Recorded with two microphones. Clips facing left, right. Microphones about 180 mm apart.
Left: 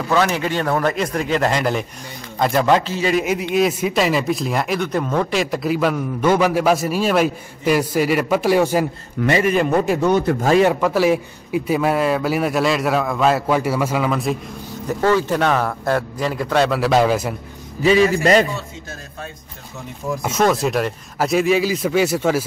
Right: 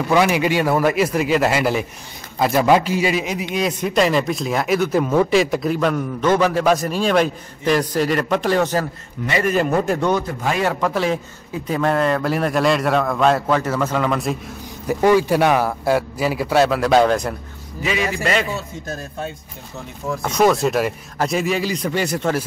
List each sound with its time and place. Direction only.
0.1 s a man's voice: 10° right (ahead or behind)
3.5 s speech: centre (ahead or behind)
14.9 s a man's voice: 15° right (ahead or behind); by 17.4 s 5° left (ahead or behind)
17.8 s a man's voice: 35° left (ahead or behind)
20.2 s speech: centre (ahead or behind)